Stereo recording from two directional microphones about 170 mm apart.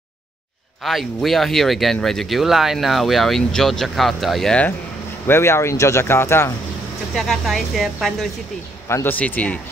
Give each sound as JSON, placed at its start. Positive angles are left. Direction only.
{"t": 0.8, "sound": "speech", "side_deg": 0}
{"t": 7.2, "sound": "speech", "side_deg": 0}
{"t": 8.8, "sound": "speech", "side_deg": 15}